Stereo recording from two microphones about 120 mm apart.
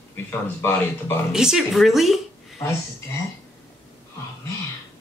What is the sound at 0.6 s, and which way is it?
Speech, 20° left (ahead or behind).